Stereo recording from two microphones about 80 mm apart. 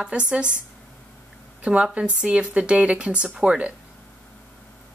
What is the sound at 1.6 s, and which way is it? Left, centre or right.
Speech, centre.